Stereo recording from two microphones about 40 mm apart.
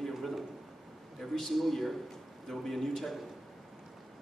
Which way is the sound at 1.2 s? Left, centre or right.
Centre.